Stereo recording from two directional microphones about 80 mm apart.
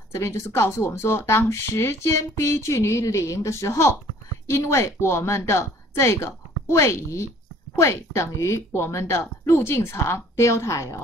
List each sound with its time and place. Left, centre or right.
0.1 s speech: left